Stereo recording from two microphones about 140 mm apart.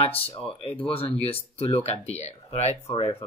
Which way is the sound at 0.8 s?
40° left (ahead or behind).